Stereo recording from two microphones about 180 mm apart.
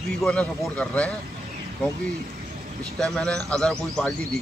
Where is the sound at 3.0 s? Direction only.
5° left (ahead or behind).